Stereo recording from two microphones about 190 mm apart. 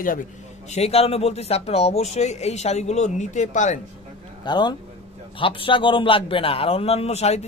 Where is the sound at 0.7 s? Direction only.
35° left (ahead or behind).